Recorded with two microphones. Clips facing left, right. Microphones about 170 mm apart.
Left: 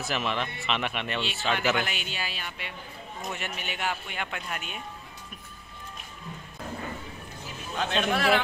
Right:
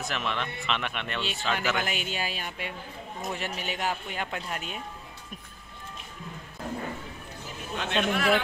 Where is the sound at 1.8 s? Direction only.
40° right (ahead or behind).